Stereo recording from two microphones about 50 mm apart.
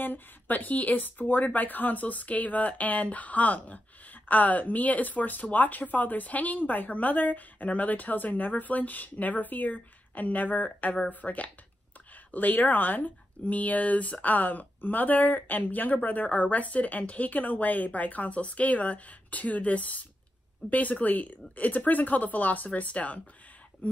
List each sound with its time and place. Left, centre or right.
0.0 s speech: left